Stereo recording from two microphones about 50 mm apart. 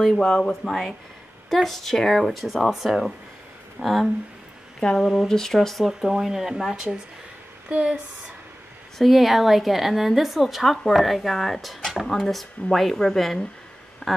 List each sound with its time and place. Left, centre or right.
0.5 s a woman's voice: centre
5.3 s speech: centre
5.9 s speech: centre
8.9 s a woman's voice: centre
14.0 s a sound: centre